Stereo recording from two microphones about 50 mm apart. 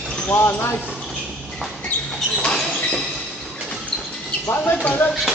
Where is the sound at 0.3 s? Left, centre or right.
Left.